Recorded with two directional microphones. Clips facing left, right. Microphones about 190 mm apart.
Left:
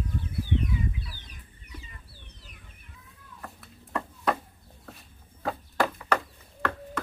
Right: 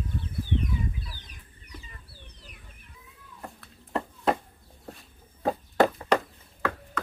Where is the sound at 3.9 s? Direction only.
25° right (ahead or behind).